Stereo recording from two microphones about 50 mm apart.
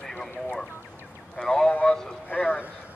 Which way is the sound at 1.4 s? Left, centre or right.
Centre.